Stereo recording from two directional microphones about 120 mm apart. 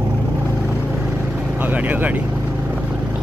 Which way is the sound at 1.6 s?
15° right (ahead or behind).